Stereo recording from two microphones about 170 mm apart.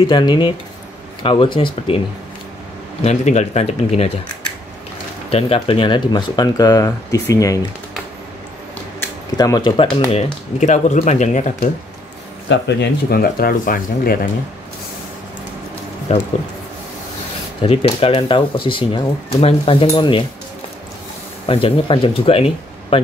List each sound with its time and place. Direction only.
0.0 s speech: 25° left (ahead or behind)
3.0 s speech: 40° left (ahead or behind)
5.3 s speech: 30° left (ahead or behind)
9.4 s speech: 20° left (ahead or behind)
10.1 s speech: 45° left (ahead or behind)
12.4 s speech: 90° left; by 14.1 s 55° left (ahead or behind)
16.1 s speech: 40° left (ahead or behind)
17.6 s speech: 35° left (ahead or behind)
21.5 s speech: 30° left (ahead or behind)